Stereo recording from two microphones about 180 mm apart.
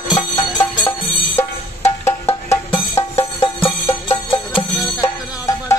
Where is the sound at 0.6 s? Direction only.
25° left (ahead or behind).